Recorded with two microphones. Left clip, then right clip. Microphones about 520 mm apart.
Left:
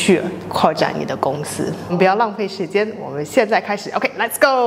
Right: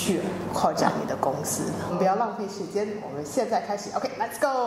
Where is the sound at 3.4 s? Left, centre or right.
Left.